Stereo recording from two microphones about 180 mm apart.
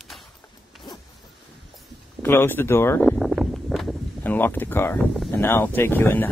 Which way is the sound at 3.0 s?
Centre (ahead or behind).